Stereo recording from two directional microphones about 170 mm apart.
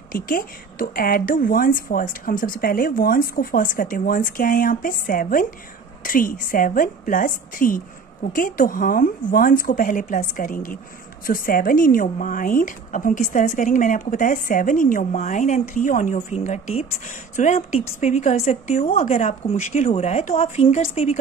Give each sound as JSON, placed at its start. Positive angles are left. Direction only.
{"t": 0.1, "sound": "a woman's voice", "side_deg": 55}